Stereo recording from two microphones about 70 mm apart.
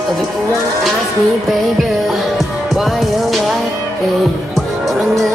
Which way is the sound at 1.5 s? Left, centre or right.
Centre.